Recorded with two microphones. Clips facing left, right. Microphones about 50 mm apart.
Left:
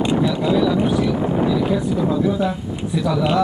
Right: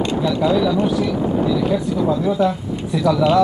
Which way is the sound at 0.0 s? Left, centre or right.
Centre.